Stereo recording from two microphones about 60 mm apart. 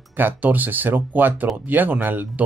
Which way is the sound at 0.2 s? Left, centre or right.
Right.